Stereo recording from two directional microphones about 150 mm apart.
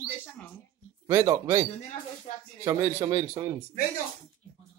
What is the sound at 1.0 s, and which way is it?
A man's voice, 20° right (ahead or behind).